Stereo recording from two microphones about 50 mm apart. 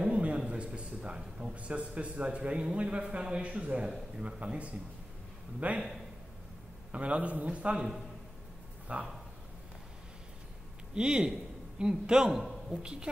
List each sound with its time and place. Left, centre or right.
0.1 s a sound: right
0.5 s a man's voice: right
6.9 s a man's voice: right
8.9 s a man's voice: right
11.0 s a man's voice: centre